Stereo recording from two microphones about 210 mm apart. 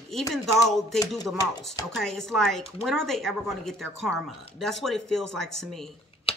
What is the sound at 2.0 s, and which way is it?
Speech, centre (ahead or behind).